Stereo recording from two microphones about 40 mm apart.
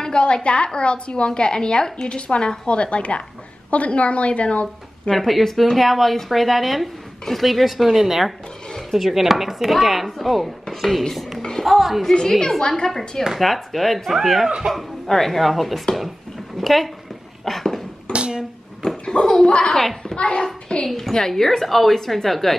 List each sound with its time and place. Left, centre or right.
0.0 s a woman's voice: left
5.1 s a woman's voice: centre
12.1 s a woman's voice: centre
13.4 s a woman's voice: centre
17.5 s a sound: centre
18.1 s a sound: right
19.0 s a child's voice: centre
19.7 s a child's voice: centre
20.2 s a woman's voice: left
20.4 s a child's voice: centre